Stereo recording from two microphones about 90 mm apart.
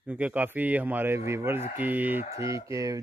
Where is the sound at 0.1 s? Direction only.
15° right (ahead or behind).